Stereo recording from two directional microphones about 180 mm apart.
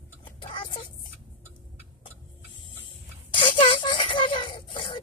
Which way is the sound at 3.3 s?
30° left (ahead or behind).